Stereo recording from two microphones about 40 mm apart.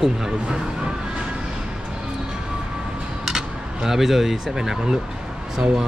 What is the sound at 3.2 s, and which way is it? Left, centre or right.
Speech, centre.